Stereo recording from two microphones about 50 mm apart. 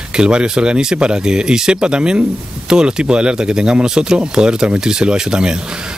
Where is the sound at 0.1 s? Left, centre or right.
Centre.